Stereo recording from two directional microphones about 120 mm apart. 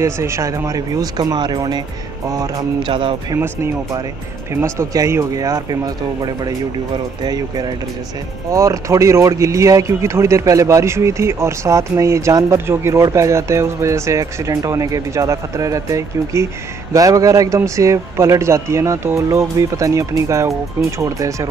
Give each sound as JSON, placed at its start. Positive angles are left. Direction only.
{"t": 0.0, "sound": "speech", "side_deg": -25}
{"t": 2.8, "sound": "speech", "side_deg": -45}
{"t": 4.6, "sound": "speech", "side_deg": -25}